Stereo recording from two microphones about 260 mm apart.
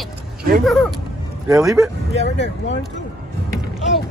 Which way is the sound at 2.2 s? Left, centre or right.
Left.